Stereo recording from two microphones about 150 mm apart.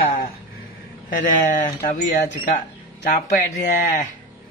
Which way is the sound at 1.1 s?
60° left (ahead or behind).